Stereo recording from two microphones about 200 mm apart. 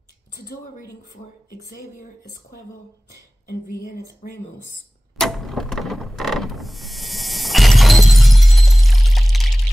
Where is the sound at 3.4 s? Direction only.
50° left (ahead or behind).